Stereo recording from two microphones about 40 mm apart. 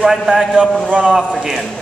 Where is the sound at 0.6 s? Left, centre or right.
Right.